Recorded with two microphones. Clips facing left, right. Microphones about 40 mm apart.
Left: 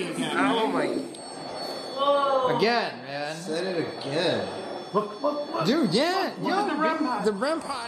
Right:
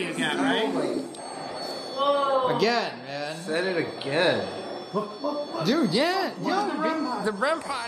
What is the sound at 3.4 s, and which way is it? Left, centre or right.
Speech, right.